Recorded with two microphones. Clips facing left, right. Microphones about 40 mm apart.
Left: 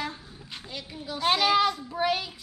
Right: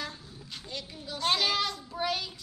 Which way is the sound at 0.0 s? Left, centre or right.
Centre.